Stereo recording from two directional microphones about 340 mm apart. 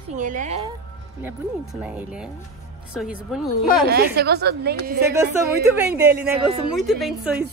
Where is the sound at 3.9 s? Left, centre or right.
Right.